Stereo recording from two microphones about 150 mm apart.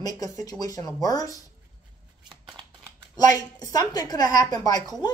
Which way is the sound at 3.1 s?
25° left (ahead or behind).